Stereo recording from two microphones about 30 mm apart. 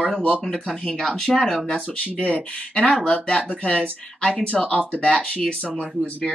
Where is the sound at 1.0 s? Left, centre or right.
Centre.